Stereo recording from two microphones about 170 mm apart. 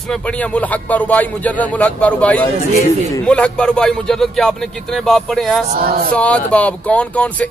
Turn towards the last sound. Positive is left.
turn(degrees=10)  # may be behind; listen again after turning